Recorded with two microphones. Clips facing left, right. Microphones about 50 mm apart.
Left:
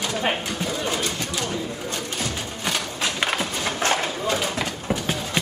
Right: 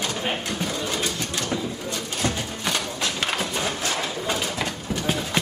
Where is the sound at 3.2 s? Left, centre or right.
Centre.